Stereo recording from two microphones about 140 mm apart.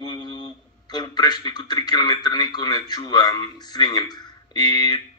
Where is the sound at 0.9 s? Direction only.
30° left (ahead or behind).